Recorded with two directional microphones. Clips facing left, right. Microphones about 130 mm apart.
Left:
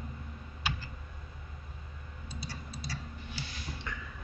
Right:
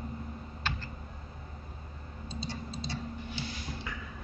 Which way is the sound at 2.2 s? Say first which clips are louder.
Right 5 dB; 25° right (ahead or behind).